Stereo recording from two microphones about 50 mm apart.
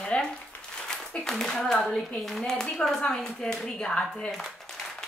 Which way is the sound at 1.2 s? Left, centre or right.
Centre.